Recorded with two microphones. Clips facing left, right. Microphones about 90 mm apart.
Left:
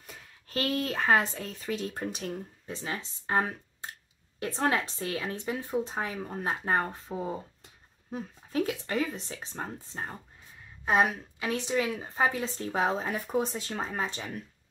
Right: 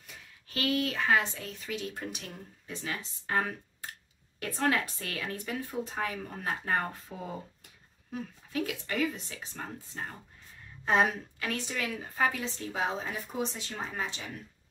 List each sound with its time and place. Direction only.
0.0 s a woman's voice: 40° left (ahead or behind)
10.9 s a woman's voice: 10° left (ahead or behind)
11.4 s a woman's voice: 20° left (ahead or behind)
12.7 s speech: 45° left (ahead or behind)